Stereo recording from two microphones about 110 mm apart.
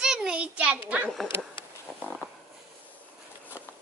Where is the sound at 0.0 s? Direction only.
5° right (ahead or behind).